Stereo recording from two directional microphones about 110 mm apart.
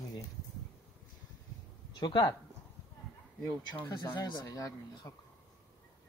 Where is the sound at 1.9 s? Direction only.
40° left (ahead or behind).